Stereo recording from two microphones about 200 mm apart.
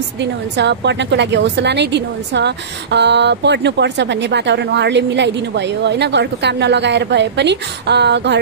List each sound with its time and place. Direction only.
0.2 s a woman's voice: 60° right (ahead or behind)